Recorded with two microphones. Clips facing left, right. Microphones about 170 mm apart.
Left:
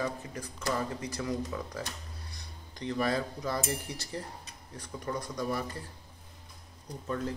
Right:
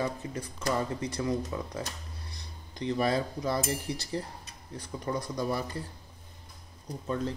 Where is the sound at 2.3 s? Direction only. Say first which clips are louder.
Right 2 dB; 30° right (ahead or behind).